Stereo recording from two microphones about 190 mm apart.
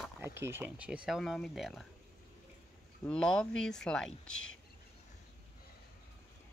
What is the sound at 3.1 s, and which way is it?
Speech, 5° left (ahead or behind).